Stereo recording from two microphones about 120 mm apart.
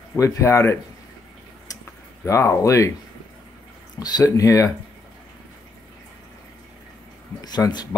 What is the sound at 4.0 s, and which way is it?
Speech, 30° left (ahead or behind).